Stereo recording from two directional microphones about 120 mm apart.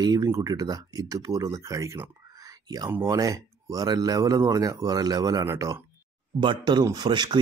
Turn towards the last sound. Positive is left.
turn(degrees=-40)  # may be behind; listen again after turning